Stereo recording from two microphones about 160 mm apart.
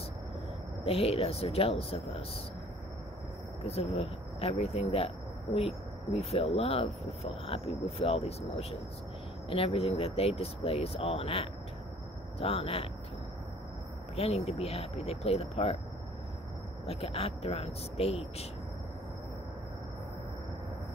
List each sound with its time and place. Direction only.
0.8 s speech: 40° left (ahead or behind)
3.6 s speech: 40° left (ahead or behind)
14.1 s speech: 40° left (ahead or behind)
16.8 s speech: 40° left (ahead or behind)